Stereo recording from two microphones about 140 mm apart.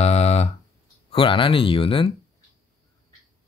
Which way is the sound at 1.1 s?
40° left (ahead or behind).